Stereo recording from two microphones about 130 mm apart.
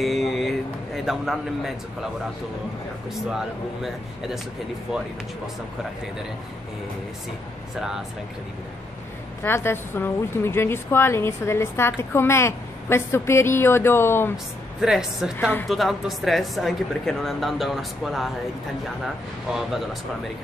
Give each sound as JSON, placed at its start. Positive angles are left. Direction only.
{"t": 0.0, "sound": "a sound", "side_deg": 0}
{"t": 1.0, "sound": "speech", "side_deg": 0}
{"t": 3.3, "sound": "speech", "side_deg": -5}
{"t": 9.4, "sound": "a woman's voice", "side_deg": 20}
{"t": 14.3, "sound": "speech", "side_deg": -5}
{"t": 19.5, "sound": "speech", "side_deg": 0}